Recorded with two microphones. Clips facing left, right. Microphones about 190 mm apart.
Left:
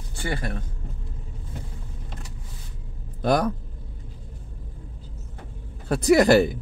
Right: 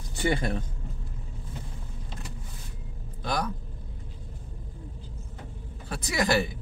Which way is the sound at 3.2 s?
55° left (ahead or behind).